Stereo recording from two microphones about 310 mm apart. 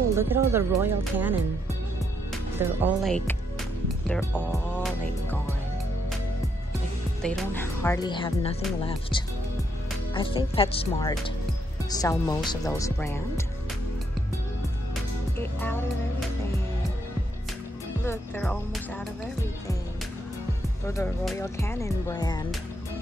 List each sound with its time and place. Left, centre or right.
0.1 s speech: centre
2.3 s speech: centre
7.2 s speech: centre
15.6 s speech: centre
18.0 s speech: centre
20.8 s speech: centre